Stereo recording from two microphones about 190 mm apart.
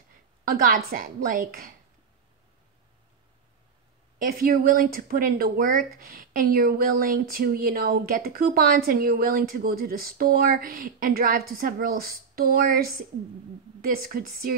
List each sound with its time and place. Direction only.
0.5 s speech: 45° right (ahead or behind)
4.2 s speech: 50° right (ahead or behind)